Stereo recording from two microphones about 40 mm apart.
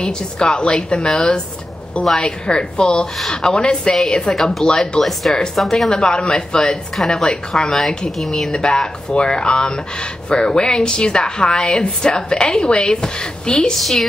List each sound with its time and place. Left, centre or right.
0.0 s a woman's voice: left
8.5 s a woman's voice: left
13.7 s a woman's voice: centre